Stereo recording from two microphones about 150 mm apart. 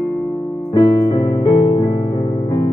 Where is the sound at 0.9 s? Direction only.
25° left (ahead or behind).